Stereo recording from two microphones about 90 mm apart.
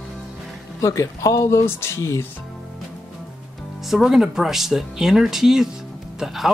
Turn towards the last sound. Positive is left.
turn(degrees=0)  # may be behind; listen again after turning